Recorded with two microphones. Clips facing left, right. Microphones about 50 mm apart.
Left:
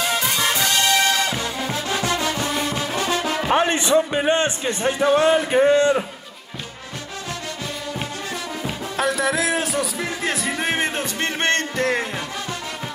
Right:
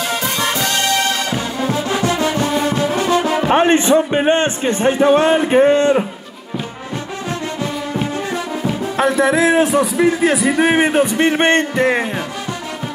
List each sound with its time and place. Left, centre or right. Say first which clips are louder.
0.4 s music: right 3 dB; centre
3.4 s speech: right 6 dB; right
8.9 s speech: right 6 dB; right
10.3 s speech: right 9 dB; centre